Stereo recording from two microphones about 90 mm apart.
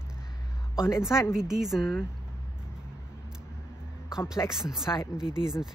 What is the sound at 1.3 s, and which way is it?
Speech, 5° right (ahead or behind).